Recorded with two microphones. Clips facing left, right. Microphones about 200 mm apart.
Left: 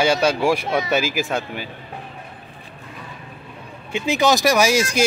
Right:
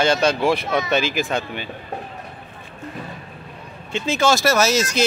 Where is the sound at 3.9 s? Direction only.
15° left (ahead or behind).